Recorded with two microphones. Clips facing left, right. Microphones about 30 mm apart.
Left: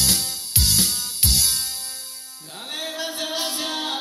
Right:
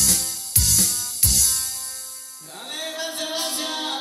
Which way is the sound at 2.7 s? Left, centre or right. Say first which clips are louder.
Left 1 dB; centre.